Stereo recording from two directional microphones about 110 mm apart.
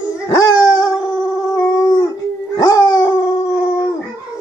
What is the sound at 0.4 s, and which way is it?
Dog, 35° left (ahead or behind).